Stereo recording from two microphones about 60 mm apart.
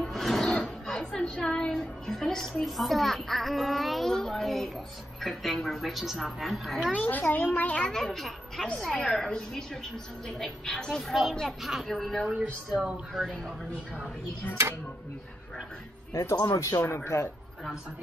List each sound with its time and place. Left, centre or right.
0.0 s music: centre
0.8 s a woman's voice: centre
7.1 s a child's voice: left
7.9 s a woman's voice: centre
12.7 s speech: right
16.1 s speech: left